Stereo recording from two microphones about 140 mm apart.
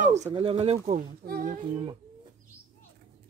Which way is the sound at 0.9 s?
85° right.